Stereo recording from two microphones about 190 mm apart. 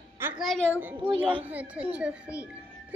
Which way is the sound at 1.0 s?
25° right (ahead or behind).